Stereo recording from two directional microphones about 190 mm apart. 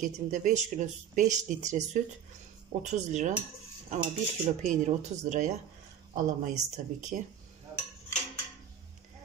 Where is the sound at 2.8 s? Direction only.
40° right (ahead or behind).